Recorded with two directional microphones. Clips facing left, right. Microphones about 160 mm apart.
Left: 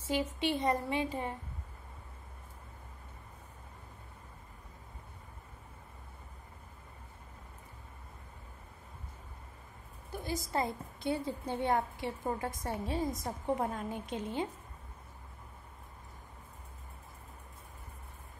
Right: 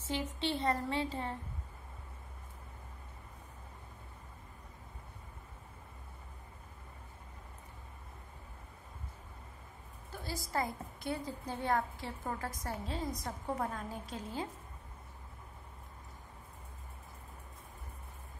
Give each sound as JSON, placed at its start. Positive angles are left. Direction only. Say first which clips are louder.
{"t": 0.0, "sound": "a woman's voice", "louder": "left 4 dB", "side_deg": 10}
{"t": 10.1, "sound": "a woman's voice", "louder": "left 3 dB", "side_deg": 20}